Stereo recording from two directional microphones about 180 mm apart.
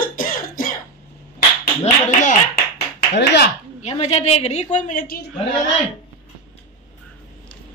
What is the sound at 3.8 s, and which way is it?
A woman's voice, 35° left (ahead or behind).